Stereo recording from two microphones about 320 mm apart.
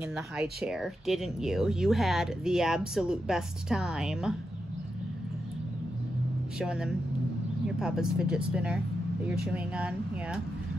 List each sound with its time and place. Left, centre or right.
0.1 s speech: centre
6.6 s speech: centre